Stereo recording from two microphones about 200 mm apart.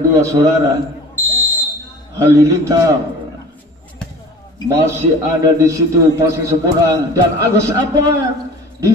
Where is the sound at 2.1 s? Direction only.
15° right (ahead or behind).